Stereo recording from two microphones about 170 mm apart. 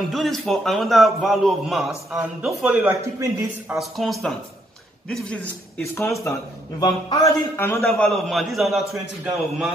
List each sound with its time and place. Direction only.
0.1 s a man's voice: centre (ahead or behind)
3.7 s a man's voice: centre (ahead or behind)
6.8 s speech: 20° left (ahead or behind)
7.8 s a man's voice: centre (ahead or behind)